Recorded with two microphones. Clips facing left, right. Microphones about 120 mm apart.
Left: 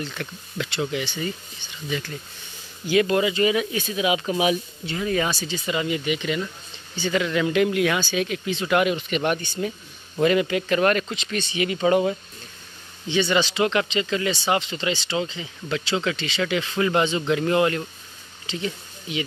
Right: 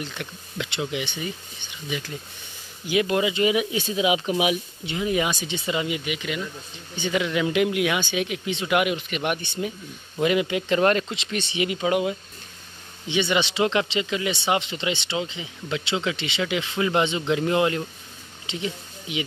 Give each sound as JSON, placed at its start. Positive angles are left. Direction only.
{"t": 0.0, "sound": "speech", "side_deg": -15}
{"t": 7.0, "sound": "speech", "side_deg": -15}
{"t": 11.8, "sound": "speech", "side_deg": -10}